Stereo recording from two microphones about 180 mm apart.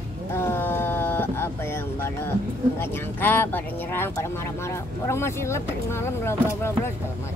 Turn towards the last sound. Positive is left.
turn(degrees=15)  # may be behind; listen again after turning